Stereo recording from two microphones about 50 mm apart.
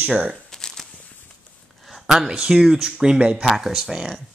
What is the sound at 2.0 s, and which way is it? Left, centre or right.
Speech, centre.